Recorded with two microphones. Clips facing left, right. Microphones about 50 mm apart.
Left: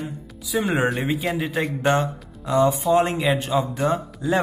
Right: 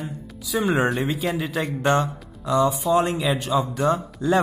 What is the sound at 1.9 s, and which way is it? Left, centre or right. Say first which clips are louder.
Speech: even; left.